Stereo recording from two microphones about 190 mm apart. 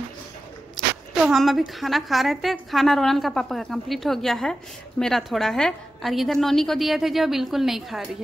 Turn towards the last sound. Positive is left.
turn(degrees=0)  # may be behind; listen again after turning